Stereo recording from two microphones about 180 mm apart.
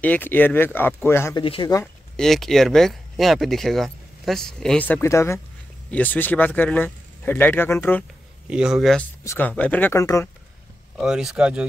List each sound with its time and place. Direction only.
0.0 s a man's voice: 10° left (ahead or behind)
1.3 s speech: 25° left (ahead or behind)
2.1 s a man's voice: centre (ahead or behind)
8.5 s speech: 5° right (ahead or behind)
9.2 s a man's voice: 10° left (ahead or behind)
11.0 s speech: 5° right (ahead or behind)